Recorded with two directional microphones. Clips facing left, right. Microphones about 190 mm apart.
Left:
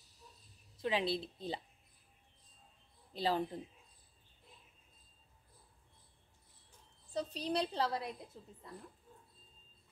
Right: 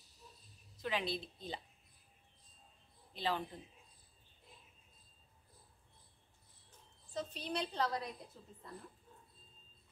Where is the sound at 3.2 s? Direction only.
35° left (ahead or behind).